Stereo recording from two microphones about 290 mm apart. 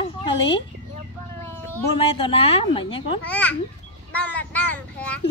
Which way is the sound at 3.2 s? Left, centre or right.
Centre.